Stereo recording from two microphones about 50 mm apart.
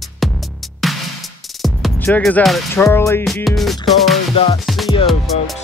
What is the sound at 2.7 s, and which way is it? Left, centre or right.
Music, left.